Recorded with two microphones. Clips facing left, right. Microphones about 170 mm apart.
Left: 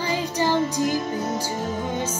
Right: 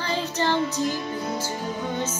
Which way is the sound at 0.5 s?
45° left (ahead or behind).